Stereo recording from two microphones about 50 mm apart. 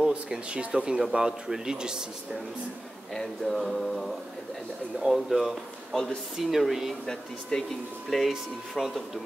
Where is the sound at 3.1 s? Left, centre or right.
Centre.